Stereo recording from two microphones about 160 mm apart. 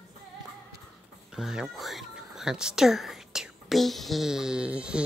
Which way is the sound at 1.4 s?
5° right (ahead or behind).